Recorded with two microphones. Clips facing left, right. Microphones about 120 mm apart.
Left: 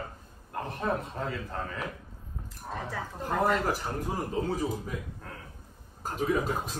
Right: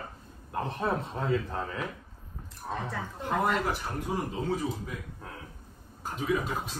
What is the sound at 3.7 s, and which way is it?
Speech, 40° left (ahead or behind).